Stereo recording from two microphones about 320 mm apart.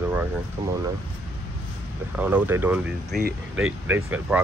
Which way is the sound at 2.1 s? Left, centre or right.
Centre.